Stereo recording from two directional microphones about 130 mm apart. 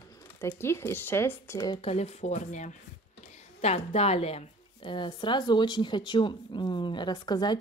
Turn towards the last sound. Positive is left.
turn(degrees=35)  # may be behind; listen again after turning